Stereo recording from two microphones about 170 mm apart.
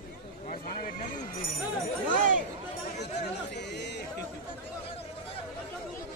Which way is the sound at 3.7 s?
85° left.